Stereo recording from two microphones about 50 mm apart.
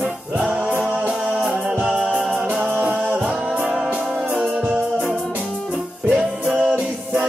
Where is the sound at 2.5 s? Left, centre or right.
Right; by 3.9 s centre.